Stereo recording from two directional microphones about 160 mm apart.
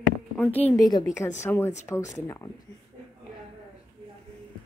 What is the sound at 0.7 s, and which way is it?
Speech, 25° left (ahead or behind).